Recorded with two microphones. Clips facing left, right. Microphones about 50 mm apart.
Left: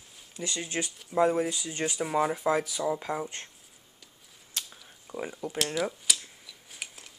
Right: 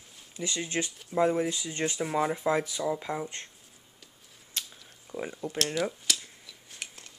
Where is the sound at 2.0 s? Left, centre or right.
Centre.